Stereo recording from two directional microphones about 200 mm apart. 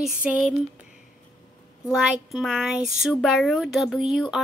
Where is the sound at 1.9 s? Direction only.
Centre (ahead or behind).